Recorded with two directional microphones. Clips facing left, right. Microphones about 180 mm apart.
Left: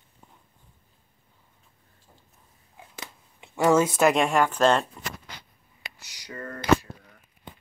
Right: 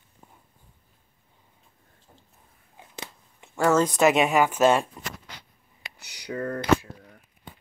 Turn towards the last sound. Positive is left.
turn(degrees=-60)  # may be behind; listen again after turning